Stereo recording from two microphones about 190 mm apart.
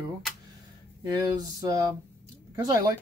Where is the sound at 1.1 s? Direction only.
20° right (ahead or behind).